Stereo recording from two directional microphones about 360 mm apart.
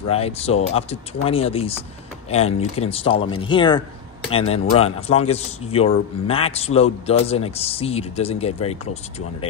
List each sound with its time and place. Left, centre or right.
0.1 s a man's voice: centre